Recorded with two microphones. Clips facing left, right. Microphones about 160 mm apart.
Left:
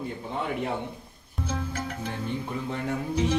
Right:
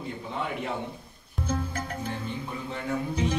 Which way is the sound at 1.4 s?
Centre (ahead or behind).